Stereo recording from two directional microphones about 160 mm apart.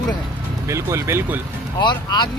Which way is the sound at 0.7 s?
20° right (ahead or behind).